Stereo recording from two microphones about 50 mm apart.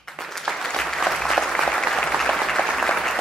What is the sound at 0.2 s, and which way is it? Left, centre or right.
Applause, centre.